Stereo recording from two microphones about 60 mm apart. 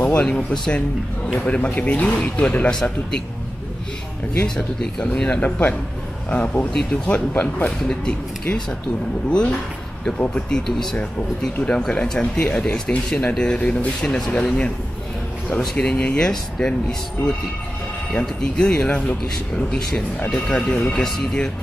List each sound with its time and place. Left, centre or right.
0.0 s speech: left
2.7 s speech: centre
4.4 s speech: left
15.7 s speech: centre
18.4 s speech: centre
20.2 s speech: centre